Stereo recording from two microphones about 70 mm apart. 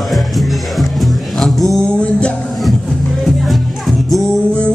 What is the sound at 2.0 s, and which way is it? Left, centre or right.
Music, centre.